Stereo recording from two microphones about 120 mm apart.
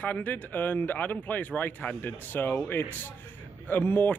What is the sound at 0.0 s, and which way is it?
Speech, 15° left (ahead or behind).